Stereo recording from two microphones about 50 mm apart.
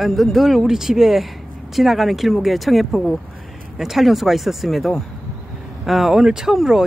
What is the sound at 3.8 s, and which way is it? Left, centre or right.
Speech, centre.